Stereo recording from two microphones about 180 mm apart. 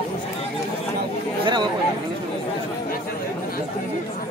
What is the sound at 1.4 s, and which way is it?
Chatter, 25° right (ahead or behind).